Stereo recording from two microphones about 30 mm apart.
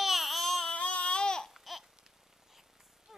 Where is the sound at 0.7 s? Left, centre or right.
Left.